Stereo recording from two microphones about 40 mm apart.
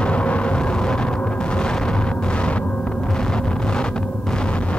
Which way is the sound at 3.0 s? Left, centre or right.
Centre.